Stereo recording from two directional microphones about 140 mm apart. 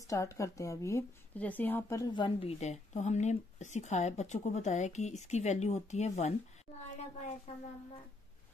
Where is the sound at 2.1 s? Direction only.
40° left (ahead or behind).